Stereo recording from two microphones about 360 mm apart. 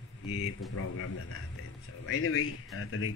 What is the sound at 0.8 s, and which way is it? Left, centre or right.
A man's voice, left.